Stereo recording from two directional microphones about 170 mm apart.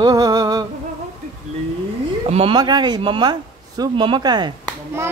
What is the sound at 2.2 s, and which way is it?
Speech, 35° right (ahead or behind).